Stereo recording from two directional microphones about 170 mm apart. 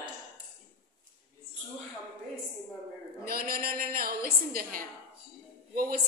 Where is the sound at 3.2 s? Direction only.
60° right (ahead or behind).